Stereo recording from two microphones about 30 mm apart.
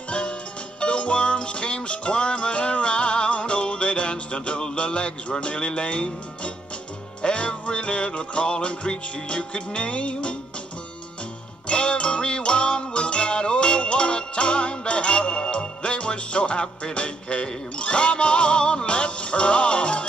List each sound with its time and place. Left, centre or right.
0.1 s music: left
11.6 s music: left